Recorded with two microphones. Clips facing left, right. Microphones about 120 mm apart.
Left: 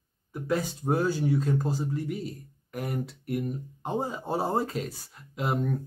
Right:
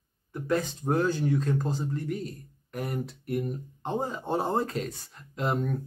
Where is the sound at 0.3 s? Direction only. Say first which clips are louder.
Right 1 dB; 10° left (ahead or behind).